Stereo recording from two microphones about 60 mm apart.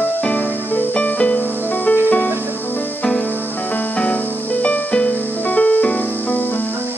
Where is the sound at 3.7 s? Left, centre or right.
Left.